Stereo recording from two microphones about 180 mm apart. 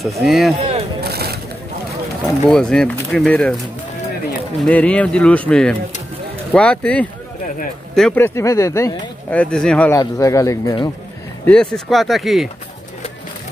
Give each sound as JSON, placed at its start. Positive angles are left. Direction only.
{"t": 0.2, "sound": "speech", "side_deg": 0}
{"t": 0.6, "sound": "a sound", "side_deg": -35}
{"t": 1.0, "sound": "a sound", "side_deg": -60}
{"t": 2.5, "sound": "speech", "side_deg": 5}
{"t": 4.6, "sound": "speech", "side_deg": 5}
{"t": 9.9, "sound": "speech", "side_deg": 20}
{"t": 11.4, "sound": "speech", "side_deg": 5}